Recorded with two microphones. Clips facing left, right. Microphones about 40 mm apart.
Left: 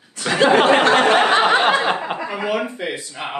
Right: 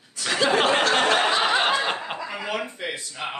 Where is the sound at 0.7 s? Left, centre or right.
Left.